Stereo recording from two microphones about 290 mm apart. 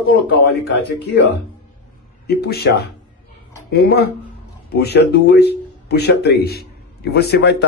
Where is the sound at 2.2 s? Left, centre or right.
Left.